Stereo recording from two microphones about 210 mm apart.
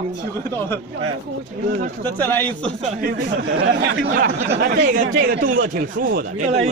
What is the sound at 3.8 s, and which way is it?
Speech, 60° right (ahead or behind).